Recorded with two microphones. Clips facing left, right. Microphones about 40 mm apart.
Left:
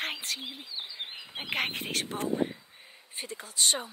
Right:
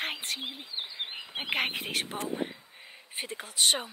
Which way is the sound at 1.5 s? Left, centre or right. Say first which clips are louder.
Right 1 dB; centre.